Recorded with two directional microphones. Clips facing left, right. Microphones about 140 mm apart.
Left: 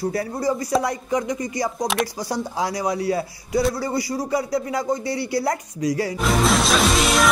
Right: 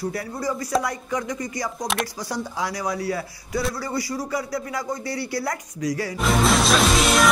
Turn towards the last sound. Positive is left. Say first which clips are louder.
# even
turn(degrees=0)  # may be behind; listen again after turning